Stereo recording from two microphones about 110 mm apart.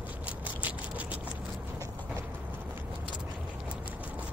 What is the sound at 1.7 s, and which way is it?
Clip-clop, 25° right (ahead or behind).